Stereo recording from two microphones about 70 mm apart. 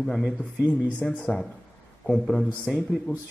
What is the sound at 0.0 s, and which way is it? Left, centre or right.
Speech, centre.